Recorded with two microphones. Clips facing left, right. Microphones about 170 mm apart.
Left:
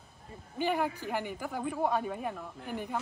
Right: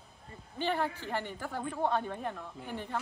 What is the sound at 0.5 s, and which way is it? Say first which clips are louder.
A woman's voice: left 2 dB; 10° left (ahead or behind).